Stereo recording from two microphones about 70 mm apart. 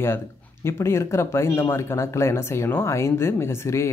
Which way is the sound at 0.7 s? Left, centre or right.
Left.